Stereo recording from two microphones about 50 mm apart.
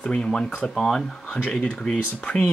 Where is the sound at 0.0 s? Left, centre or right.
Left.